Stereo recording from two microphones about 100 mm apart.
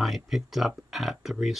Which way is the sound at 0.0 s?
Centre (ahead or behind).